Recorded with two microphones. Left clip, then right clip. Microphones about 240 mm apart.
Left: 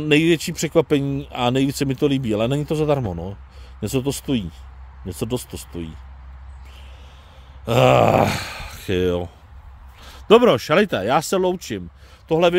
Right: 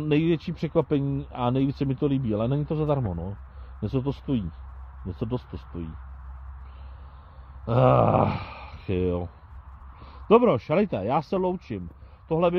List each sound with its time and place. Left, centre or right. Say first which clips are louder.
0.0 s speech: left 7 dB; centre
7.6 s a man's voice: left 6 dB; centre